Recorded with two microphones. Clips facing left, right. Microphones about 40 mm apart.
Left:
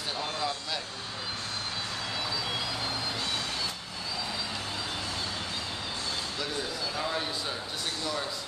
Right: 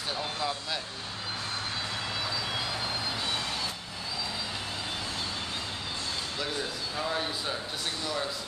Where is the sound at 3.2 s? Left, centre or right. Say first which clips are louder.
Right 1 dB; centre.